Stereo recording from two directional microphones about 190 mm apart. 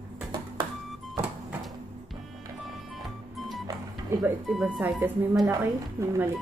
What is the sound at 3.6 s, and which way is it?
Music, 15° right (ahead or behind).